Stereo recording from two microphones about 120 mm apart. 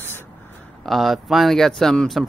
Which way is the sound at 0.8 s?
Centre (ahead or behind).